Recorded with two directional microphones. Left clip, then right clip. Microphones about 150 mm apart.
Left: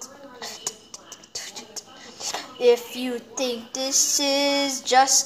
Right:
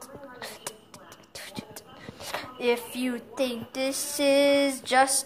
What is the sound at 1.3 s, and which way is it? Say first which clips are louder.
Speech: left 5 dB; 15° right (ahead or behind).